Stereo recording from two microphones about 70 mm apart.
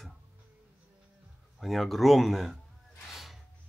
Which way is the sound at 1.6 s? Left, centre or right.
Centre.